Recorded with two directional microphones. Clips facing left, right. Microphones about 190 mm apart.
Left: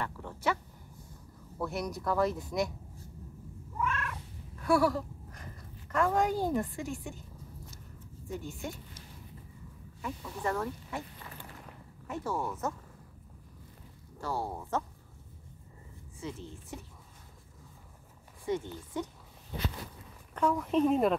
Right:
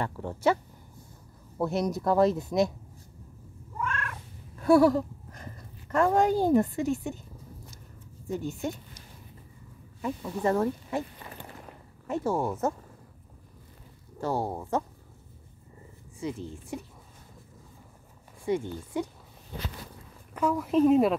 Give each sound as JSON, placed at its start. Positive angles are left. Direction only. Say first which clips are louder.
{"t": 0.0, "sound": "speech", "louder": "right 7 dB", "side_deg": -35}
{"t": 1.6, "sound": "speech", "louder": "right 7 dB", "side_deg": -25}
{"t": 3.8, "sound": "cat", "louder": "even", "side_deg": 0}
{"t": 4.6, "sound": "a sound", "louder": "right 7 dB", "side_deg": -25}
{"t": 6.8, "sound": "speech", "louder": "right 9 dB", "side_deg": -20}
{"t": 8.3, "sound": "speech", "louder": "right 7 dB", "side_deg": -25}
{"t": 10.0, "sound": "speech", "louder": "right 7 dB", "side_deg": -25}
{"t": 14.2, "sound": "speech", "louder": "right 6 dB", "side_deg": -20}
{"t": 16.2, "sound": "speech", "louder": "right 7 dB", "side_deg": -15}
{"t": 18.4, "sound": "speech", "louder": "right 5 dB", "side_deg": -10}
{"t": 20.3, "sound": "speech", "louder": "right 3 dB", "side_deg": -5}